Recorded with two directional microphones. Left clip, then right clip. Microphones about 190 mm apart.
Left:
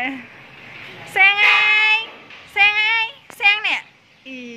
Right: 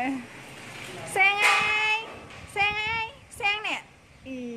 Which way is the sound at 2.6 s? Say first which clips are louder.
Left 11 dB; 5° right (ahead or behind).